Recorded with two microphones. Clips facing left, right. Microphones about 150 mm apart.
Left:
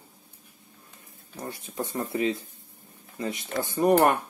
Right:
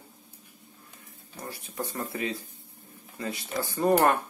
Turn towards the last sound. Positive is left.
turn(degrees=20)  # may be behind; listen again after turning